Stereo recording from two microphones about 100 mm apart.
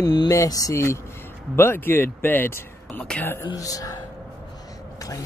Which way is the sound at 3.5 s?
35° left (ahead or behind).